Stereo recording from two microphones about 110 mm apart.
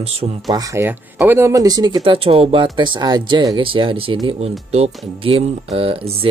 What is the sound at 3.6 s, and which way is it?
Speech, 50° right (ahead or behind).